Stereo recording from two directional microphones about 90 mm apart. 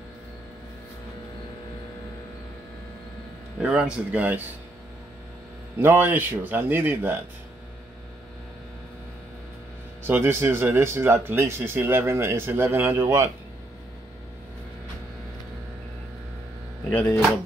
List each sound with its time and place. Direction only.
3.6 s speech: 10° right (ahead or behind)
5.8 s speech: 20° right (ahead or behind)
10.0 s speech: 25° right (ahead or behind)
16.9 s speech: 30° left (ahead or behind)